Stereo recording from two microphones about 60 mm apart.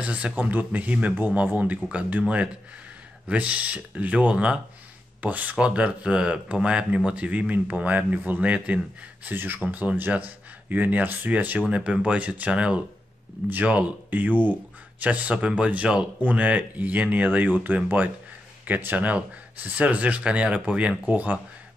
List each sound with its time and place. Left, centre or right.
0.0 s speech: centre
0.4 s speech: right
9.3 s speech: right